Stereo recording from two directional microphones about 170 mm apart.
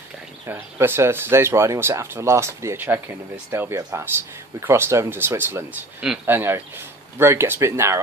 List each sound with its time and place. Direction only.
0.5 s speech: 15° right (ahead or behind)